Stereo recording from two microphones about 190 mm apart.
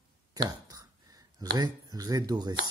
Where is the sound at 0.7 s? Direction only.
20° right (ahead or behind).